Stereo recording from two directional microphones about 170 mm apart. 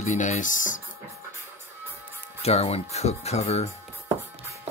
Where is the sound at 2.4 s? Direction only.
40° left (ahead or behind).